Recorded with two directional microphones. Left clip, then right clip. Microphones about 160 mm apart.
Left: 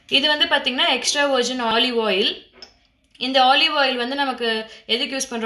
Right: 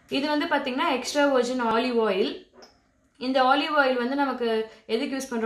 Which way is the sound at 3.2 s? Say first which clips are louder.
Left 6 dB; 50° left (ahead or behind).